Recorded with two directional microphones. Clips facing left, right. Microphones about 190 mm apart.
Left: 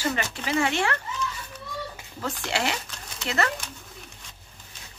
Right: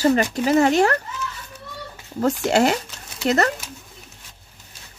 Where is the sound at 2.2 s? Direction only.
45° right (ahead or behind).